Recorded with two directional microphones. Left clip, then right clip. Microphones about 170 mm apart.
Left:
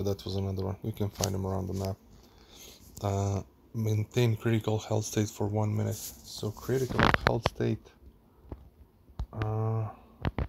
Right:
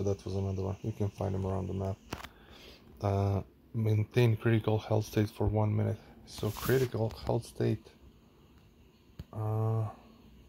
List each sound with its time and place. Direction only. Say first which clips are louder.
0.4 s speech: left 1 dB; 20° left (ahead or behind)
2.5 s speech: left 2 dB; 5° left (ahead or behind)
9.3 s speech: left 2 dB; 5° right (ahead or behind)